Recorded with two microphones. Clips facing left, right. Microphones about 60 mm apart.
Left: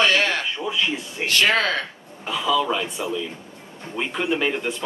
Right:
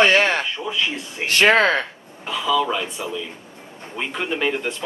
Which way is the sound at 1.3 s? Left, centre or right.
Right.